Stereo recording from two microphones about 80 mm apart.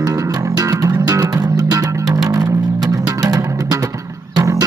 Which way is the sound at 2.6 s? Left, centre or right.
Right.